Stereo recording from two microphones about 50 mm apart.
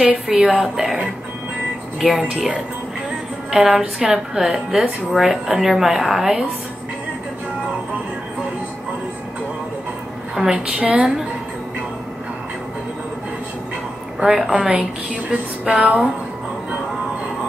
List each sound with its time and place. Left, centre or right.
0.3 s a woman's voice: centre
2.0 s a woman's voice: centre
2.3 s a woman's voice: centre
10.5 s a woman's voice: right
14.2 s a woman's voice: centre
14.5 s a woman's voice: right